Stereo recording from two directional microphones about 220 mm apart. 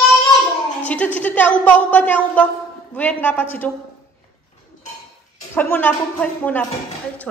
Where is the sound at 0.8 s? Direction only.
5° left (ahead or behind).